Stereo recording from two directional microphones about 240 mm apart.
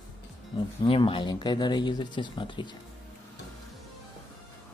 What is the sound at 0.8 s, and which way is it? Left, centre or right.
Speech, left.